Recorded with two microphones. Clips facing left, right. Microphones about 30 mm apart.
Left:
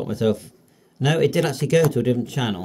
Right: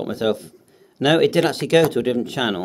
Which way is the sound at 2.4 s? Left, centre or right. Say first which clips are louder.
Right 3 dB; centre.